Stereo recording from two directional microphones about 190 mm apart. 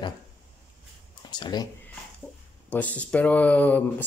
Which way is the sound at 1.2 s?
20° left (ahead or behind).